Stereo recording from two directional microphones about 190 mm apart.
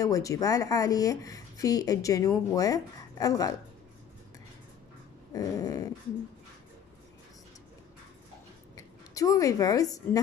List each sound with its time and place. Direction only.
0.0 s speech: 15° left (ahead or behind)
5.3 s dog: 20° left (ahead or behind)
8.7 s a woman's voice: 20° left (ahead or behind)